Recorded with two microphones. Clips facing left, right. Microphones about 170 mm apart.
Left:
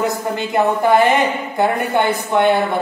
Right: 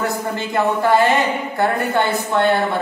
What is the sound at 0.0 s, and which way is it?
A woman's voice, 20° left (ahead or behind).